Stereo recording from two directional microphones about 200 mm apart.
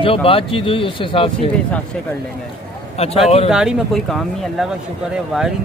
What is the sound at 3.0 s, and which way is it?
Speech, 30° left (ahead or behind).